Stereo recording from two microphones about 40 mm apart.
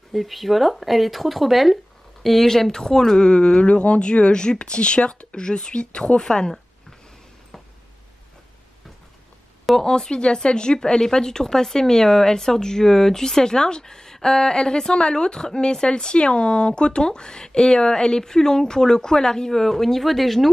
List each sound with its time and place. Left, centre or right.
0.1 s speech: centre
2.4 s speech: centre
9.8 s a woman's voice: centre